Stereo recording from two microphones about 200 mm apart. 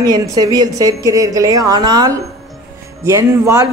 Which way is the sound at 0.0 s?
15° right (ahead or behind).